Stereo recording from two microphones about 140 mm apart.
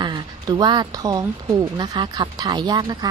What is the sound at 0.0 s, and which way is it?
Speech, 30° right (ahead or behind).